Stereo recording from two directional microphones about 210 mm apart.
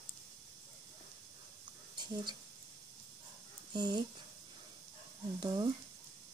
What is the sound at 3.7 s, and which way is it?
Speech, 20° right (ahead or behind).